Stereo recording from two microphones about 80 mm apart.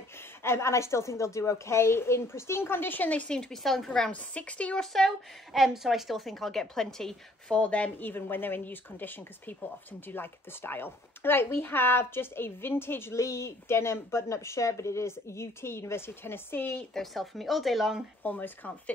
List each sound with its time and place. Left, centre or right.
0.4 s a woman's voice: left; by 4.1 s centre
4.1 s a woman's voice: centre
16.9 s speech: centre
18.2 s a woman's voice: left